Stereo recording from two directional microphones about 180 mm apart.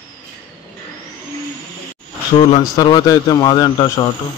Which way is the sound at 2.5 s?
25° left (ahead or behind).